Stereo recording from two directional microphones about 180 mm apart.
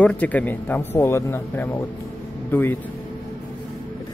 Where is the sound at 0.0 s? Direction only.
10° left (ahead or behind).